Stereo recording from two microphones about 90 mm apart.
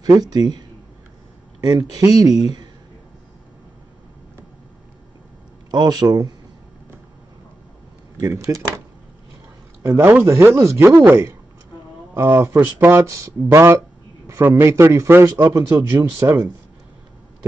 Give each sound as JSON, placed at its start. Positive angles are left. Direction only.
{"t": 0.0, "sound": "speech", "side_deg": -45}
{"t": 5.7, "sound": "speech", "side_deg": -50}
{"t": 8.2, "sound": "speech", "side_deg": -40}
{"t": 9.8, "sound": "speech", "side_deg": -25}